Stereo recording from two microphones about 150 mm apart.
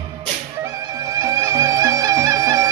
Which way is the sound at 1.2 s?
20° right (ahead or behind).